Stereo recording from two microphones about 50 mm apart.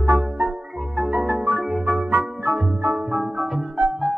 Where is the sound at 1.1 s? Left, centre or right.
Right.